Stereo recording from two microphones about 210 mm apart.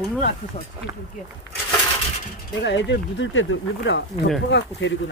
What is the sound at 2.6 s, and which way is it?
Speech, 55° left (ahead or behind).